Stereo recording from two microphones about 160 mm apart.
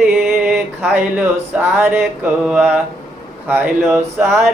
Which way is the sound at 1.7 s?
10° right (ahead or behind).